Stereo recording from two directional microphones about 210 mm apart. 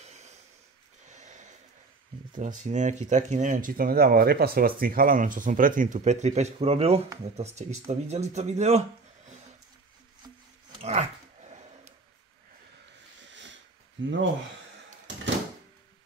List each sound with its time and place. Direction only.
0.0 s snort: 30° right (ahead or behind)
2.3 s speech: 35° right (ahead or behind)
10.8 s dog: 30° right (ahead or behind)
13.2 s sniff: 60° right (ahead or behind)
14.0 s speech: 65° right (ahead or behind)